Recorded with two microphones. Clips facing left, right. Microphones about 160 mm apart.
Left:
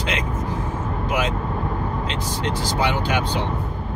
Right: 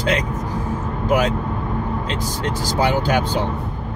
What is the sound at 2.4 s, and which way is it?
Speech, 40° right (ahead or behind).